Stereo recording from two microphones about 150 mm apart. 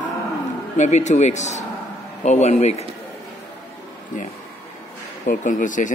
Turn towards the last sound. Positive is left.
turn(degrees=60)  # may be behind; listen again after turning